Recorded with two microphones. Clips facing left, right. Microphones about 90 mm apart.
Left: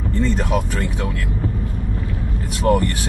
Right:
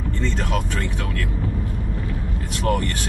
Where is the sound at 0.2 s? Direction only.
15° left (ahead or behind).